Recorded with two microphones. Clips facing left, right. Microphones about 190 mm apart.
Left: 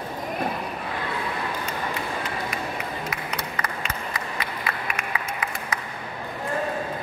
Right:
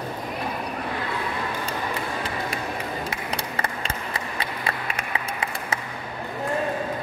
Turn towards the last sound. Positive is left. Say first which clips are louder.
# right 1 dB
turn(degrees=-30)  # may be behind; listen again after turning